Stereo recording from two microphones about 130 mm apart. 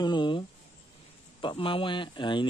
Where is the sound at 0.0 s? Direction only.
35° left (ahead or behind).